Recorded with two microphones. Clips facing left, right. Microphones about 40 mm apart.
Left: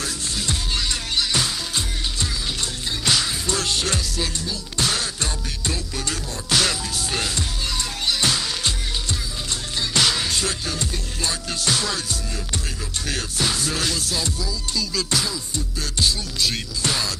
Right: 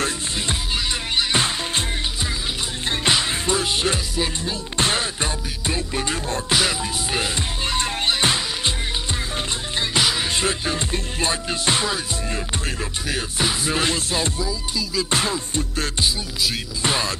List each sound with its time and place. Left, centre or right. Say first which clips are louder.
1.1 s music: right 3 dB; right
3.1 s music: right 2 dB; right
7.7 s music: right 4 dB; right
9.9 s music: even; centre
10.3 s music: right 3 dB; right
13.1 s music: right 1 dB; centre